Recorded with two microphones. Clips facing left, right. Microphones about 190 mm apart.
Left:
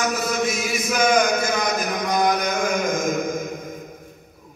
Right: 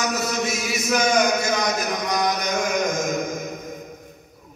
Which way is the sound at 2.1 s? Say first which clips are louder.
Left 4 dB; 55° left (ahead or behind).